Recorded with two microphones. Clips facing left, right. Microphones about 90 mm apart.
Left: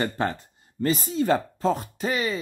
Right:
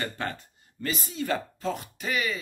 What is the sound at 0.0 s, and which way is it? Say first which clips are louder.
Speech: left 6 dB; 30° left (ahead or behind).